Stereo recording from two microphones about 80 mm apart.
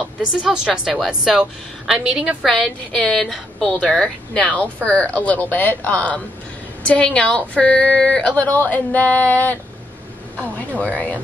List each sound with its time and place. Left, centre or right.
0.4 s a woman's voice: centre
2.4 s a woman's voice: centre
8.4 s speech: left
10.7 s speech: centre